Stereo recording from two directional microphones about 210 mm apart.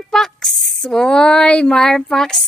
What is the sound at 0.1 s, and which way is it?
A woman's voice, centre (ahead or behind).